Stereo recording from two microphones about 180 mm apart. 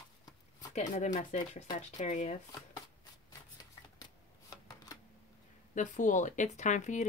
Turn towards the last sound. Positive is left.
turn(degrees=40)  # may be behind; listen again after turning